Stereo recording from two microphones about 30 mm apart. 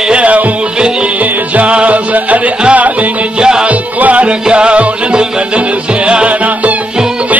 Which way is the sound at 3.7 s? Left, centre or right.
Right.